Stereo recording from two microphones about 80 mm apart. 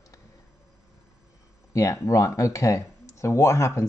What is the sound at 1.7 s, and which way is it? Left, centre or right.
Speech, left.